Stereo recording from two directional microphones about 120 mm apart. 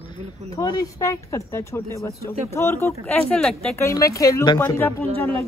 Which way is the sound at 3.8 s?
25° left (ahead or behind).